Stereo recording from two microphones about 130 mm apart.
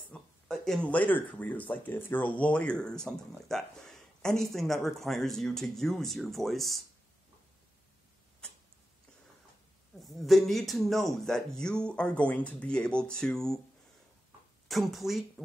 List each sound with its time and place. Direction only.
0.1 s speech: 5° left (ahead or behind)
9.9 s speech: centre (ahead or behind)
14.7 s speech: centre (ahead or behind)